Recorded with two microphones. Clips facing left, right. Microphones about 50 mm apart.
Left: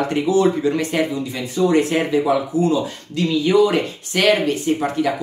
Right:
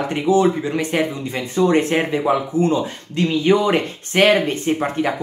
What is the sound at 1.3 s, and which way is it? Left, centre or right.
Speech, right.